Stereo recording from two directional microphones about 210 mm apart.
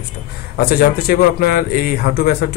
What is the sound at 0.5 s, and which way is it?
A man's voice, 45° left (ahead or behind).